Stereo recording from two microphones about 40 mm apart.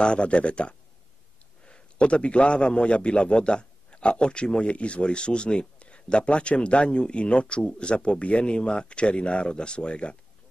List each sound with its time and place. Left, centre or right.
0.0 s a man's voice: left